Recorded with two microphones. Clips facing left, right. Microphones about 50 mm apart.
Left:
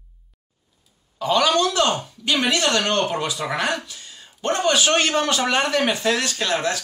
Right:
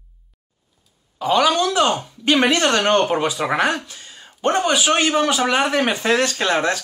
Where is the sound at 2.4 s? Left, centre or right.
Right; by 5.7 s centre.